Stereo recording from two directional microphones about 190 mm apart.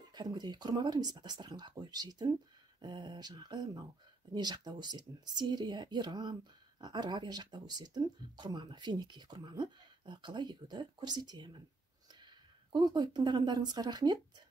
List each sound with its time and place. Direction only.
0.1 s speech: 20° right (ahead or behind)